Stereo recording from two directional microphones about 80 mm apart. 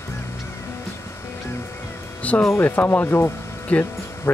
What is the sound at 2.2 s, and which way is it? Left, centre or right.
Speech, centre.